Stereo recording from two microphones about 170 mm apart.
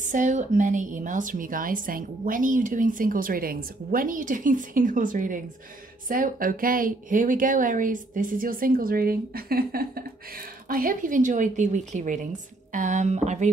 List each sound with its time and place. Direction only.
0.0 s a woman's voice: 45° right (ahead or behind)